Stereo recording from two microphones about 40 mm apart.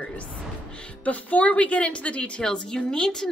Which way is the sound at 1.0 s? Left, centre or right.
Left.